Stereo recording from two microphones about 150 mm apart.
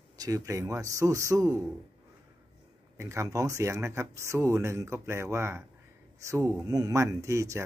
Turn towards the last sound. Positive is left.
turn(degrees=-20)  # may be behind; listen again after turning